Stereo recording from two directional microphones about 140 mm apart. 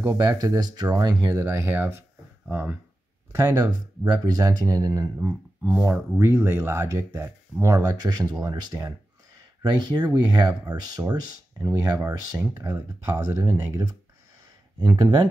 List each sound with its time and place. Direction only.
0.0 s speech: 20° right (ahead or behind)
3.3 s speech: 25° right (ahead or behind)
5.6 s speech: 10° right (ahead or behind); by 12.5 s 30° right (ahead or behind)
12.6 s speech: 15° right (ahead or behind)
14.8 s speech: 30° right (ahead or behind)